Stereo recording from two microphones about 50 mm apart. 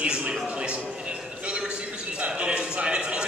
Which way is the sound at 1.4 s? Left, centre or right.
Right.